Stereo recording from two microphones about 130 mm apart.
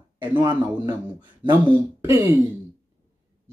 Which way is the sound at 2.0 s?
20° right (ahead or behind).